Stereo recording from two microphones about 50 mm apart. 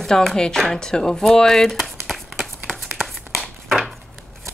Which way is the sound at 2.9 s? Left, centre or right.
Centre.